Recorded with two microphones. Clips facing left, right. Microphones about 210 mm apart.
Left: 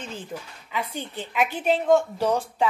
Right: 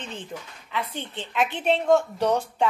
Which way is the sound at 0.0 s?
5° left (ahead or behind).